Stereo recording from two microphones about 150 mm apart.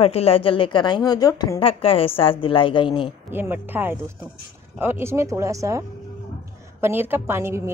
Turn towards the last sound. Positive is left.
turn(degrees=-15)  # may be behind; listen again after turning